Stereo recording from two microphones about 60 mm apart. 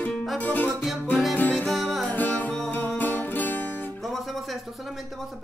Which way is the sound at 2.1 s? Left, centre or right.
Left.